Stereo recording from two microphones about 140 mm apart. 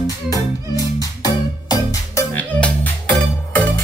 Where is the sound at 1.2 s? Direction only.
25° left (ahead or behind).